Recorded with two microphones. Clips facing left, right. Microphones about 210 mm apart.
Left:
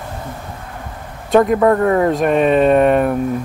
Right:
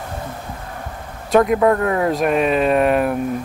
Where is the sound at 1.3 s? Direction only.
Centre (ahead or behind).